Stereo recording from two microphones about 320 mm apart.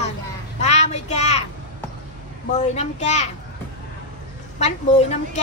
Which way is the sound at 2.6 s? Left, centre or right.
Left.